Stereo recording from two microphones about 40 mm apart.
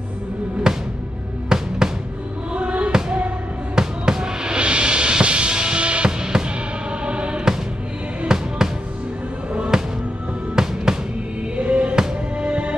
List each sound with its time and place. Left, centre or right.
0.7 s music: centre
2.5 s basketball bounce: right
2.9 s music: right
3.7 s music: centre
9.7 s music: centre
11.5 s music: right